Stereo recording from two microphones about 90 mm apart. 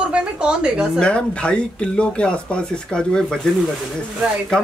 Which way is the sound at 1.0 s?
10° left (ahead or behind).